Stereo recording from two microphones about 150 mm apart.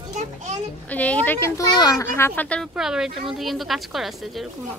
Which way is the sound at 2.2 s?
10° left (ahead or behind).